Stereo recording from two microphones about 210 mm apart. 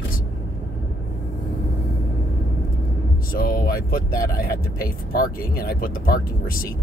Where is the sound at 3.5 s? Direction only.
45° left (ahead or behind).